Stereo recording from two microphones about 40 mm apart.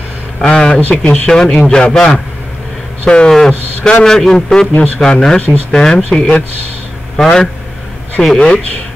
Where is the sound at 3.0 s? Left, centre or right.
Left.